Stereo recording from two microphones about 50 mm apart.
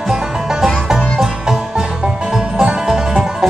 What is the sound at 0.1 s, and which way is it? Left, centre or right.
Music, centre.